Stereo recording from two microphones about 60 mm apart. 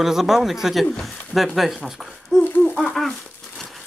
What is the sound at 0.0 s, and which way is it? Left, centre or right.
Speech, centre.